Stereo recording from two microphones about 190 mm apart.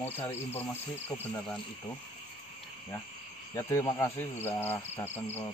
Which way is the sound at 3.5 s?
15° left (ahead or behind).